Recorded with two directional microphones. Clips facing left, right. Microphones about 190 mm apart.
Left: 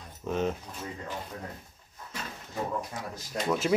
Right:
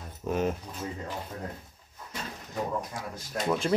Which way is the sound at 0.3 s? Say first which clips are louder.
Right 1 dB; 10° right (ahead or behind).